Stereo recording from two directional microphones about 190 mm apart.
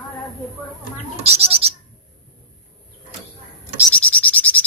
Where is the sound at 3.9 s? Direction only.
5° left (ahead or behind).